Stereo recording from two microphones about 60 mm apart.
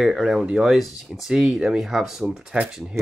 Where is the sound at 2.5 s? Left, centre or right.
Centre.